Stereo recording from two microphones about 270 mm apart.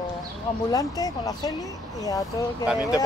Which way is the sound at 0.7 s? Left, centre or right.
Centre.